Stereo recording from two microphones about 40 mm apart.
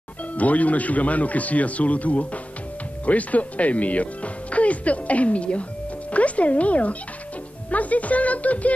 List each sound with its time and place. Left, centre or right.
0.3 s a man's voice: left